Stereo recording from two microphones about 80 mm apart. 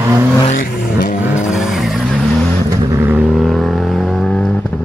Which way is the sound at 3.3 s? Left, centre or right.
Centre.